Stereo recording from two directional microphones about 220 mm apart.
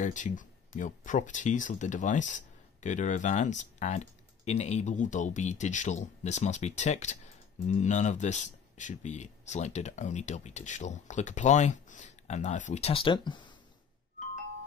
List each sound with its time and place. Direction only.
0.0 s speech: 35° left (ahead or behind)